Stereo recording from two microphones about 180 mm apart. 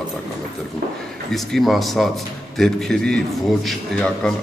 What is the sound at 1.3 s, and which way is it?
A man's voice, centre (ahead or behind).